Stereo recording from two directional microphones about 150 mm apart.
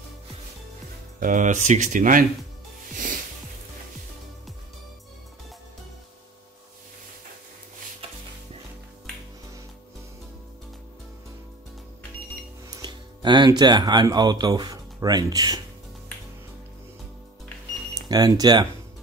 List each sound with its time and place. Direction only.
1.2 s speech: 60° right (ahead or behind)
2.9 s music: 60° right (ahead or behind)
8.0 s stir: 40° right (ahead or behind)
12.6 s speech: 25° right (ahead or behind)
18.0 s speech: 25° right (ahead or behind)